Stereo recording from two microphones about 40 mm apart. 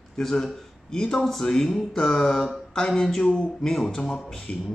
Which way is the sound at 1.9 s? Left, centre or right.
Centre.